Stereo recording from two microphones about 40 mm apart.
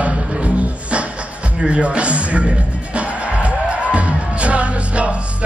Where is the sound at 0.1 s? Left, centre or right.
Right.